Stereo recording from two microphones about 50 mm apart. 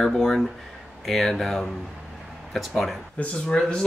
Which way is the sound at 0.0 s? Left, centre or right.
Centre.